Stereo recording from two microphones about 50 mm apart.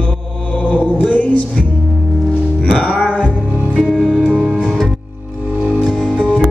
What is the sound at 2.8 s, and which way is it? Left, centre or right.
Music, left.